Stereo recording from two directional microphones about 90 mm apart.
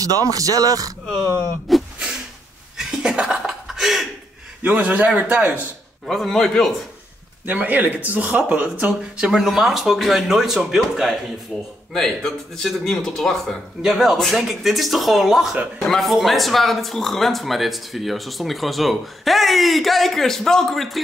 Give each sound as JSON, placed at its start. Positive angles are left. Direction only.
{"t": 0.0, "sound": "speech", "side_deg": -40}
{"t": 1.7, "sound": "a sound", "side_deg": 0}
{"t": 2.8, "sound": "chuckle", "side_deg": -5}
{"t": 4.7, "sound": "speech", "side_deg": -15}
{"t": 6.0, "sound": "speech", "side_deg": 5}
{"t": 7.4, "sound": "speech", "side_deg": -20}